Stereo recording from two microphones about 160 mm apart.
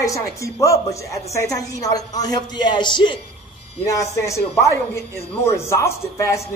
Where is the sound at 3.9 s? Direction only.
20° left (ahead or behind).